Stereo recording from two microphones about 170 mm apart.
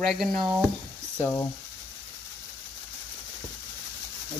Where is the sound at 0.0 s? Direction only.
Centre (ahead or behind).